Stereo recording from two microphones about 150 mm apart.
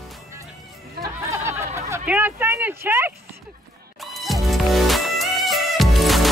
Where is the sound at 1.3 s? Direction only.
20° right (ahead or behind).